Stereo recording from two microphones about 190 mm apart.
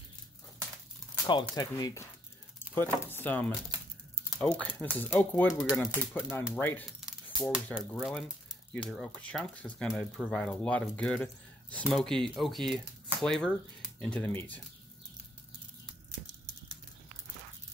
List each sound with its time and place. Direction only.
1.2 s speech: 20° left (ahead or behind)